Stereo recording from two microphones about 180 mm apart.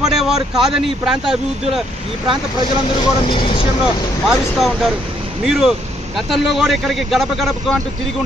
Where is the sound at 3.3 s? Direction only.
30° left (ahead or behind).